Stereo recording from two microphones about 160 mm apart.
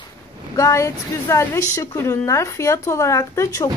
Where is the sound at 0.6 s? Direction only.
20° left (ahead or behind).